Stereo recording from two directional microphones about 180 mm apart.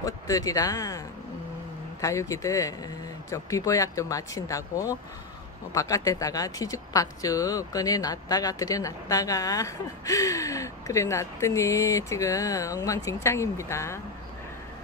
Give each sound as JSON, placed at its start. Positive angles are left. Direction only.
{"t": 0.0, "sound": "speech", "side_deg": 20}